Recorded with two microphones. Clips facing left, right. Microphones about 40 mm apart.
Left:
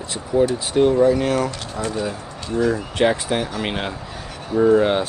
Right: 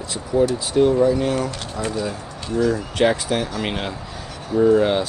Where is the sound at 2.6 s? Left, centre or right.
Left.